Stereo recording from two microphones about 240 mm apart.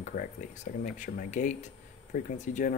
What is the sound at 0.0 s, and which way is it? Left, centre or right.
Speech, left.